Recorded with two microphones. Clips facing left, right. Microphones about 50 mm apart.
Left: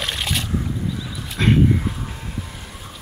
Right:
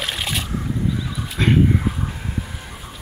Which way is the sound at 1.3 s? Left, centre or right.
Centre.